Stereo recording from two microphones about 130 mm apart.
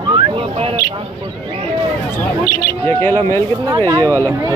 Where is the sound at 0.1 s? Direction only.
45° right (ahead or behind).